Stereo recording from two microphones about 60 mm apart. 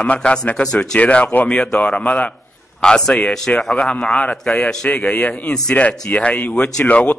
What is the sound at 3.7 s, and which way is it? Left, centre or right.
A man's voice, centre.